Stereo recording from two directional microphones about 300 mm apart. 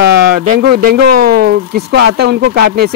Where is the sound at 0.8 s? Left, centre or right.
Right.